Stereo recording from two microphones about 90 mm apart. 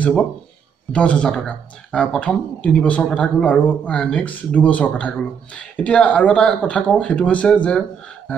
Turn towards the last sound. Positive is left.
turn(degrees=15)  # may be behind; listen again after turning